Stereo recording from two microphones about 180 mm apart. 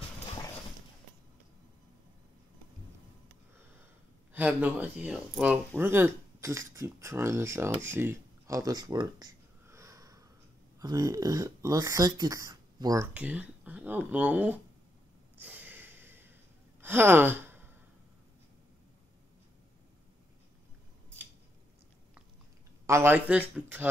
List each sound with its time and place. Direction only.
4.3 s speech: 10° right (ahead or behind)
7.8 s a sound: 10° right (ahead or behind)
10.8 s speech: 20° right (ahead or behind)
15.3 s a sound: 10° right (ahead or behind)
16.8 s speech: 10° right (ahead or behind)
22.8 s speech: 15° right (ahead or behind)